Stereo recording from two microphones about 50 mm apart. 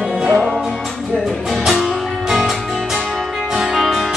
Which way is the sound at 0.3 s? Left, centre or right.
Centre.